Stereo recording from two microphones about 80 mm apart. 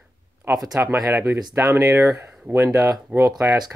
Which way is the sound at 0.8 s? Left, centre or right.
Right.